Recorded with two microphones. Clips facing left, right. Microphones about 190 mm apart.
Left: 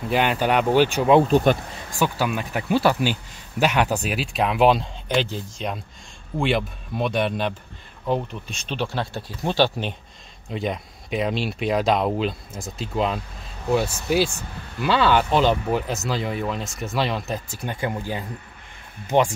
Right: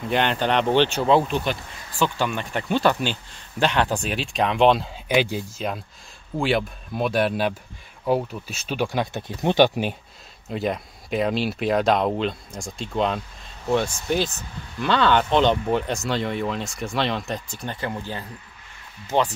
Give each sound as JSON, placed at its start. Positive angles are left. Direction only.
{"t": 0.1, "sound": "speech", "side_deg": 5}
{"t": 1.2, "sound": "speech", "side_deg": 45}
{"t": 2.0, "sound": "speech", "side_deg": 5}
{"t": 5.0, "sound": "speech", "side_deg": -10}
{"t": 10.5, "sound": "speech", "side_deg": 0}